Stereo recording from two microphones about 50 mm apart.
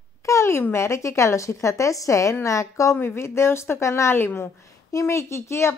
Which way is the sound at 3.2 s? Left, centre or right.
Left.